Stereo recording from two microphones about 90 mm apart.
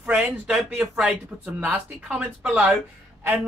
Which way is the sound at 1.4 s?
15° right (ahead or behind).